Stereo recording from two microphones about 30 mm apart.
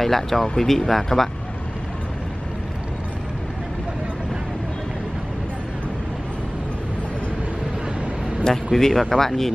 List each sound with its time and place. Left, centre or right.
0.0 s speech: centre
8.7 s speech: centre